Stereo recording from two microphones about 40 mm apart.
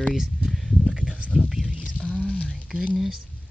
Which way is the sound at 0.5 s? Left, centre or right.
Centre.